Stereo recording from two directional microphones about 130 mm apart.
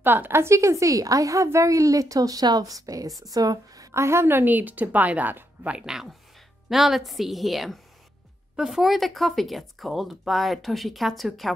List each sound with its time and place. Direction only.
0.0 s a woman's voice: 15° right (ahead or behind); by 11.5 s centre (ahead or behind)